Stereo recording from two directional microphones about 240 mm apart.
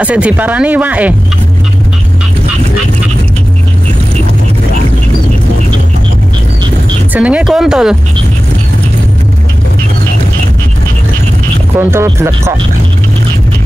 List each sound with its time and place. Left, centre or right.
0.0 s speech: centre
7.2 s speech: centre
11.8 s speech: centre